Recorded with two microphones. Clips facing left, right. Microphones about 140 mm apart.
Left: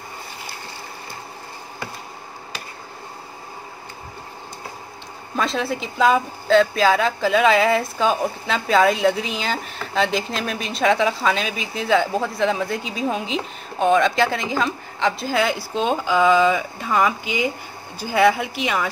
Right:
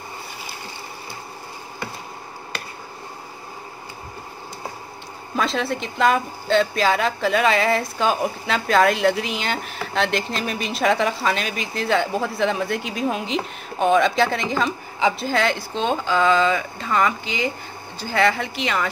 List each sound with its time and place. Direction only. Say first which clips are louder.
5.3 s speech: even; centre (ahead or behind)